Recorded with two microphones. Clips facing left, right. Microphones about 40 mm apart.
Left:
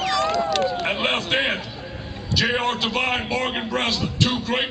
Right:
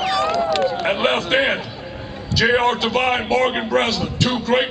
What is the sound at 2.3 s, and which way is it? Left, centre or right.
A man's voice, centre.